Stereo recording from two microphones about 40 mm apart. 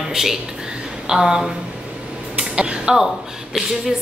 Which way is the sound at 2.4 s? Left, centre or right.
Right.